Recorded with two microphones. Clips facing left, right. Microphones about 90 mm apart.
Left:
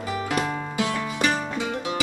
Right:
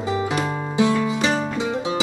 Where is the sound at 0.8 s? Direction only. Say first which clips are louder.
Right 6 dB; 25° right (ahead or behind).